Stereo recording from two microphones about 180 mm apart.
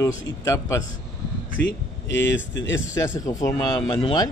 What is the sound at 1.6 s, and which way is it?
Speech, 65° left (ahead or behind).